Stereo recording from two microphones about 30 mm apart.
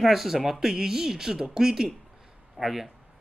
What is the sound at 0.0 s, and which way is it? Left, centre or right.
Speech, centre.